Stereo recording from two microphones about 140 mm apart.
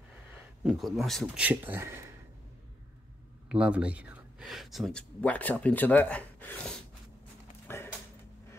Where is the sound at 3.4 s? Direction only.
10° right (ahead or behind); by 6.8 s 10° left (ahead or behind).